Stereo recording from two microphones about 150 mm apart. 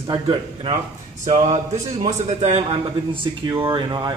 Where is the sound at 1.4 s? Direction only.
50° right (ahead or behind).